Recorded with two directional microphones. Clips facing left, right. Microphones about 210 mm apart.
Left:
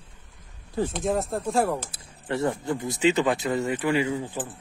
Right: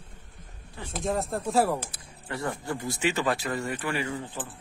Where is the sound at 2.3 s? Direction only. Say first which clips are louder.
Left 6 dB; 25° left (ahead or behind).